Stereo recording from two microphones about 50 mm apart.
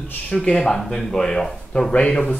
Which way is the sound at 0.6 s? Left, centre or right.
Centre.